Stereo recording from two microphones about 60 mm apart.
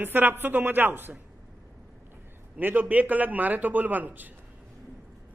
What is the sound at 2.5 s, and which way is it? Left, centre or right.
A man's voice, right.